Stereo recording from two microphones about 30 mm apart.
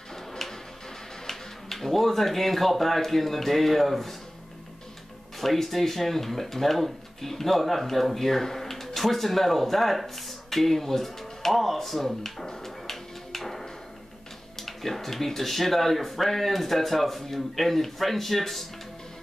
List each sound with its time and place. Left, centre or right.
1.2 s speech: centre
5.4 s speech: centre
12.6 s music: centre
14.6 s speech: centre